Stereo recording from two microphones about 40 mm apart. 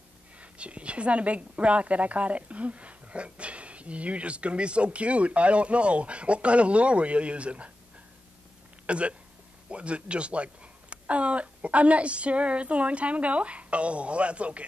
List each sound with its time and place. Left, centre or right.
0.4 s a woman's voice: right
8.8 s a woman's voice: right